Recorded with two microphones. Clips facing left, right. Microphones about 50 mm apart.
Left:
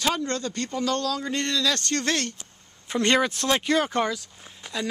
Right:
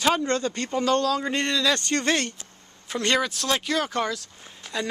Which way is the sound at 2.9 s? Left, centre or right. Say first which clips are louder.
Left 2 dB; centre.